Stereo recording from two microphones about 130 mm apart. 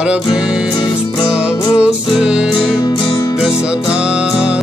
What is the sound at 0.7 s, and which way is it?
Music, 35° left (ahead or behind).